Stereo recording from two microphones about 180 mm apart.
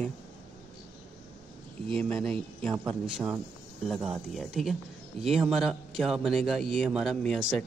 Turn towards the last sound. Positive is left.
turn(degrees=0)  # may be behind; listen again after turning